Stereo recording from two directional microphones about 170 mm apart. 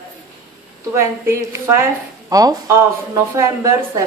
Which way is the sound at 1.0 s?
15° right (ahead or behind).